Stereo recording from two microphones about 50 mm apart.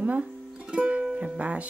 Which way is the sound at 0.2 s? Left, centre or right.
Centre.